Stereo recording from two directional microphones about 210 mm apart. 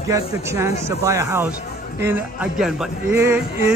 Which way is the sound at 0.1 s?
15° right (ahead or behind).